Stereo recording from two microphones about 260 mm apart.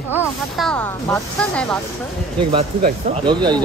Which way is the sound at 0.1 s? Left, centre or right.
Centre.